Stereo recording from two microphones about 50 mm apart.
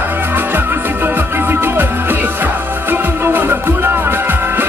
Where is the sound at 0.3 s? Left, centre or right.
Right.